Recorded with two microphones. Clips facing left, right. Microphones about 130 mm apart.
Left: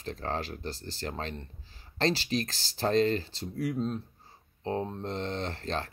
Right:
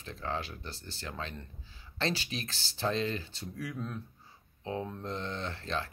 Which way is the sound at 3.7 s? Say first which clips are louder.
Left 7 dB; 25° left (ahead or behind).